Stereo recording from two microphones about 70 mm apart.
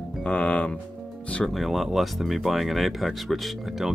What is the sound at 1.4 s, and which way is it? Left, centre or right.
Speech, centre.